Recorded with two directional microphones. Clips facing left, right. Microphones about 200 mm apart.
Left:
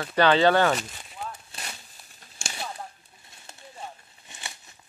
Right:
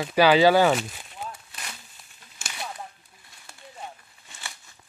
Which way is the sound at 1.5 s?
30° left (ahead or behind).